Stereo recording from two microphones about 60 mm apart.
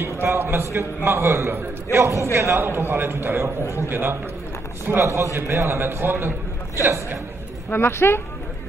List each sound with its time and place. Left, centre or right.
0.0 s a man's voice: right
3.6 s a man's voice: left
3.9 s a man's voice: right
5.1 s a man's voice: right
7.7 s speech: left